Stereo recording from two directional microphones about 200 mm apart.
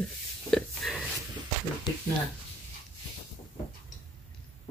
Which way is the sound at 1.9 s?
20° left (ahead or behind).